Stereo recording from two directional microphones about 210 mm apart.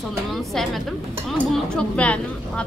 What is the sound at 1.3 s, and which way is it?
Speech, 5° left (ahead or behind).